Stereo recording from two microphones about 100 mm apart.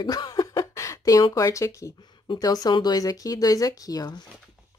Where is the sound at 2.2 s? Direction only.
45° left (ahead or behind).